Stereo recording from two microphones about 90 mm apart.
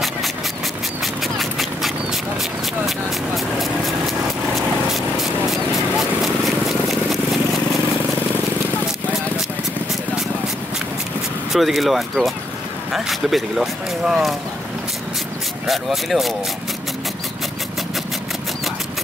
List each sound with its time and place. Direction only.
1.0 s clip-clop: centre (ahead or behind)
4.6 s vehicle: centre (ahead or behind)
11.5 s speech: centre (ahead or behind)
15.6 s speech: centre (ahead or behind)